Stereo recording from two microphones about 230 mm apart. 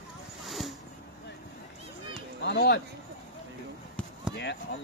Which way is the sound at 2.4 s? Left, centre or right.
Left.